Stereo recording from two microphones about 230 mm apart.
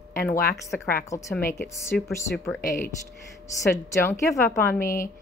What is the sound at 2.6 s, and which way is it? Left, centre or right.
Speech, left.